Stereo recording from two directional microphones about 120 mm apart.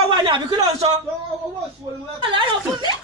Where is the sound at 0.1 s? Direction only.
40° right (ahead or behind).